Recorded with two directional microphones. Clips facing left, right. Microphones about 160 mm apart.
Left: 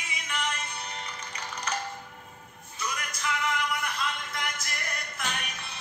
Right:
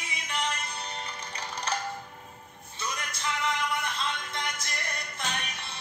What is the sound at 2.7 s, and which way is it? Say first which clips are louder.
Music: left 1 dB; 30° right (ahead or behind).